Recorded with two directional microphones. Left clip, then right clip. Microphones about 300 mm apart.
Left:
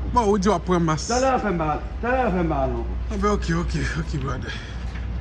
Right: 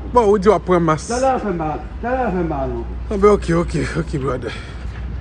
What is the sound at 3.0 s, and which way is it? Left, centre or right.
Speech, centre.